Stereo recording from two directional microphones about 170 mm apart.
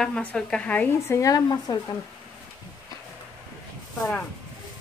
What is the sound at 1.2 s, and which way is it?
Speech, 20° left (ahead or behind).